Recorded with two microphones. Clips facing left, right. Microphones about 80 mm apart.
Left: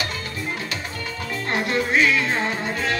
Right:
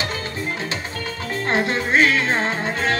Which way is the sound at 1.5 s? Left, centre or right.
Right.